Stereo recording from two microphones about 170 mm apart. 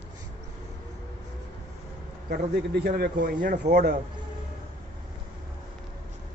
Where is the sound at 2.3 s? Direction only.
70° right (ahead or behind).